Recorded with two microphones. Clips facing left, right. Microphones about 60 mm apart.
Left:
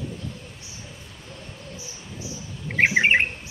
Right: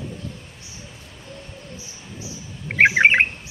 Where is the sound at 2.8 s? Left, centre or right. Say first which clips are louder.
Right 4 dB; right.